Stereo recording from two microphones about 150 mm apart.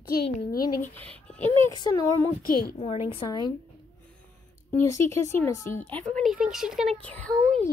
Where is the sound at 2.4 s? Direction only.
85° left.